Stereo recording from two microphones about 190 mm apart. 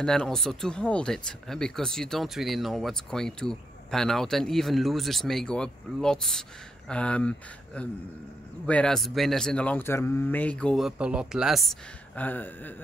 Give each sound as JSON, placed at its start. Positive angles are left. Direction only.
{"t": 0.0, "sound": "speech", "side_deg": 5}
{"t": 12.2, "sound": "speech", "side_deg": 10}